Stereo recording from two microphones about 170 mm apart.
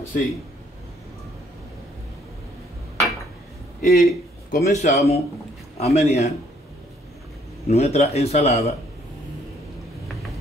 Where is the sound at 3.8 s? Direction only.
65° left (ahead or behind).